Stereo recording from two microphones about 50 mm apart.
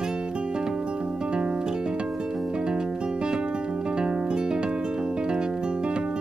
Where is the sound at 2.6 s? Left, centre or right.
Centre.